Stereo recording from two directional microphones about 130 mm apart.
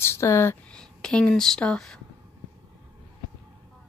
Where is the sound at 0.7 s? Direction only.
5° left (ahead or behind).